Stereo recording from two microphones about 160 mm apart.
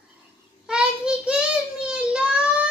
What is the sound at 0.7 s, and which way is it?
Child singing, 5° right (ahead or behind).